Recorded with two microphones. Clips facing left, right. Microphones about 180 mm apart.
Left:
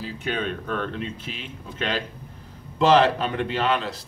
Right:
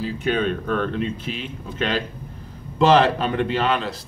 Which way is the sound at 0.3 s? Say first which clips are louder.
Right 5 dB; 90° right.